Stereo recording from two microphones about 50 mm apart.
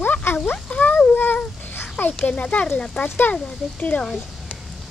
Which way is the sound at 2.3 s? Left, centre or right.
Left.